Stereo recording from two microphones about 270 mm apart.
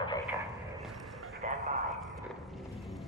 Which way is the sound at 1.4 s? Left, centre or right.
Right.